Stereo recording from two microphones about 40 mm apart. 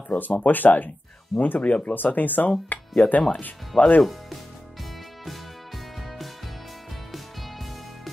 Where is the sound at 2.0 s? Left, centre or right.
Left.